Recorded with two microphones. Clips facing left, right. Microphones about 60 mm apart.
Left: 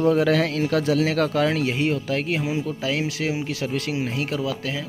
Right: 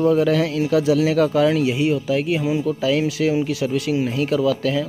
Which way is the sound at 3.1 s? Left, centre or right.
Left.